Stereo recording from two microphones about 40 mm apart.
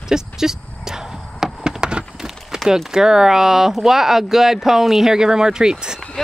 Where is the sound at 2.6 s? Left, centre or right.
Centre.